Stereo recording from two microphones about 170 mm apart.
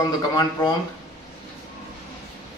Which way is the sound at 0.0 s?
25° left (ahead or behind).